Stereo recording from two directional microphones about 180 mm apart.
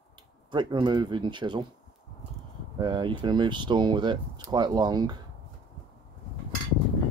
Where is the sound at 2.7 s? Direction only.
25° right (ahead or behind).